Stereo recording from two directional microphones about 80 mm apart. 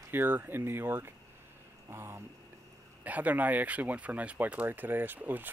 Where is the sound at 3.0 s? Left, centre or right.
Centre.